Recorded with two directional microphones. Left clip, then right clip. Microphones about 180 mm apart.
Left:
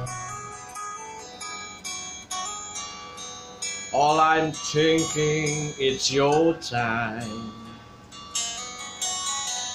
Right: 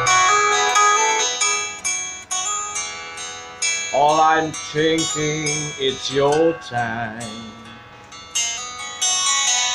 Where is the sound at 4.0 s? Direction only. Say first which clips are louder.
Right 4 dB; centre (ahead or behind).